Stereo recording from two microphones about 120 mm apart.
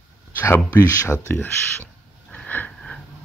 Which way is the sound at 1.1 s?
15° left (ahead or behind).